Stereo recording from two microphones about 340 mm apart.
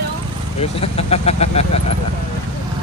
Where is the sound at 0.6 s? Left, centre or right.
Centre.